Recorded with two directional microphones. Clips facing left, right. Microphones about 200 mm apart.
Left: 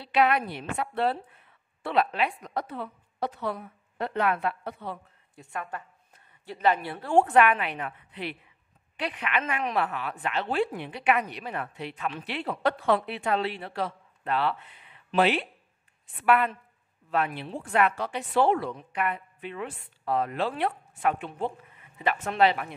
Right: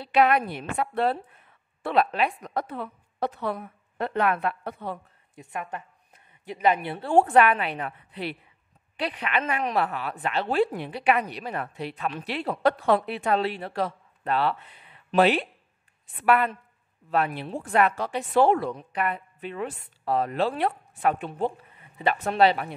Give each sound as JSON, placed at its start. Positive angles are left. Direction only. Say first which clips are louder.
{"t": 0.0, "sound": "a woman's voice", "louder": "right 3 dB", "side_deg": -45}
{"t": 5.3, "sound": "a woman's voice", "louder": "right 2 dB", "side_deg": -20}
{"t": 7.1, "sound": "speech", "louder": "right 2 dB", "side_deg": -35}